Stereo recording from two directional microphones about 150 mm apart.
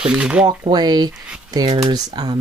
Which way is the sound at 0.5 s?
30° right (ahead or behind).